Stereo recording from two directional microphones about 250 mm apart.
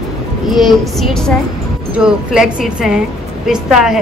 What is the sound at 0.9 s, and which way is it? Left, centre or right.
A woman's voice, centre.